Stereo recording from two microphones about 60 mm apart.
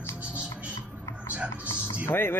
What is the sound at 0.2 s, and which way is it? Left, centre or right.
Music, right.